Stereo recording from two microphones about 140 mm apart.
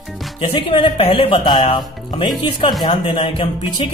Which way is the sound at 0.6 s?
40° left (ahead or behind).